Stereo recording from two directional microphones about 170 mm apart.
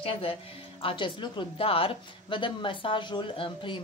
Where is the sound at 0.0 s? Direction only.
35° left (ahead or behind).